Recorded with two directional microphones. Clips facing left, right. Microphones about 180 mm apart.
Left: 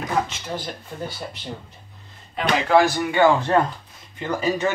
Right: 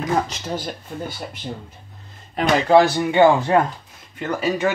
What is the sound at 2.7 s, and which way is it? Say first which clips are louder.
Speech: right 3 dB; 25° right (ahead or behind).